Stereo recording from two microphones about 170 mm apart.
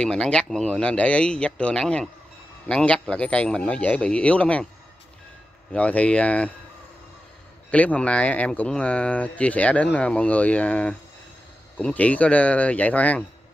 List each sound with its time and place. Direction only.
0.0 s speech: 5° left (ahead or behind)
5.7 s speech: 10° left (ahead or behind)
7.7 s speech: 10° left (ahead or behind)